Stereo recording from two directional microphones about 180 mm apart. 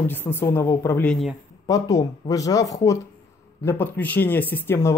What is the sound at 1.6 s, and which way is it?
Speech, 20° left (ahead or behind).